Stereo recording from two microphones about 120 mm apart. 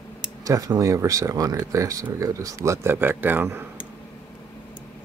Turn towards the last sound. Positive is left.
turn(degrees=-20)  # may be behind; listen again after turning